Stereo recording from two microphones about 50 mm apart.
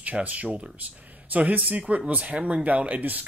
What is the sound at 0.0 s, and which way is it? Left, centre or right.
Speech, right.